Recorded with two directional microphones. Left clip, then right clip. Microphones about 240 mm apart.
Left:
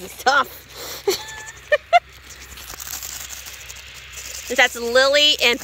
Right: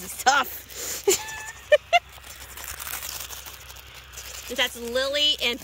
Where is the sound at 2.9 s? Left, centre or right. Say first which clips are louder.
Left 3 dB; right.